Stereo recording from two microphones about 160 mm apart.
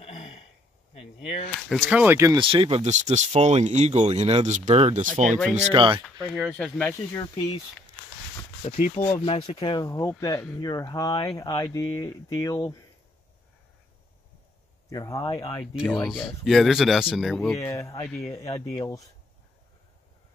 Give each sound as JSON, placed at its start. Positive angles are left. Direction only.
{"t": 0.0, "sound": "a sound", "side_deg": 40}
{"t": 1.9, "sound": "speech", "side_deg": -10}
{"t": 2.3, "sound": "speech", "side_deg": -35}
{"t": 5.0, "sound": "speech", "side_deg": -50}
{"t": 5.7, "sound": "speech", "side_deg": -30}
{"t": 6.9, "sound": "speech", "side_deg": 20}
{"t": 8.7, "sound": "speech", "side_deg": 55}
{"t": 14.9, "sound": "speech", "side_deg": 20}
{"t": 15.6, "sound": "speech", "side_deg": -5}
{"t": 17.6, "sound": "speech", "side_deg": 20}